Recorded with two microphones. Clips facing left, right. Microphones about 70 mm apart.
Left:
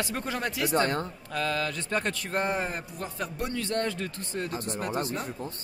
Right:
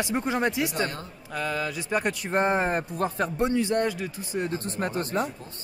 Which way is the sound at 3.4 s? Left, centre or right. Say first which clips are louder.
Right 6 dB; right.